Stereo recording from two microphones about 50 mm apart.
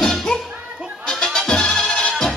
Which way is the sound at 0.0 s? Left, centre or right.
Centre.